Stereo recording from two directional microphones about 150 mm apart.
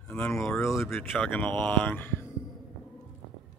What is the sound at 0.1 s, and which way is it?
Speech, 5° left (ahead or behind).